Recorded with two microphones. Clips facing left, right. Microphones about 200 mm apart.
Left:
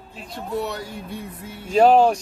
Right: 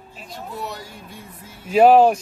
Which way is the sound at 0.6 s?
60° left (ahead or behind).